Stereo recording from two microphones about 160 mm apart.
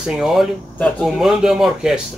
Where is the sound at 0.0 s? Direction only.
5° right (ahead or behind).